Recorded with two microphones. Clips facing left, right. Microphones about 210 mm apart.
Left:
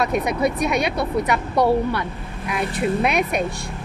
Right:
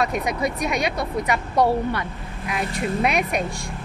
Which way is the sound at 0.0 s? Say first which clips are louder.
Left 3 dB; 60° left (ahead or behind).